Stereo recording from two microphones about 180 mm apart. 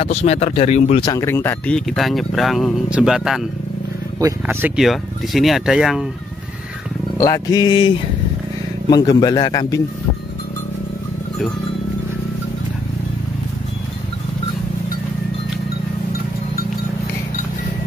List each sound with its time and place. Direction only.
0.0 s speech: 35° left (ahead or behind)
1.0 s speech: 15° left (ahead or behind)
1.9 s speech: centre (ahead or behind)
4.2 s speech: 15° right (ahead or behind)
7.2 s a man's voice: 20° left (ahead or behind)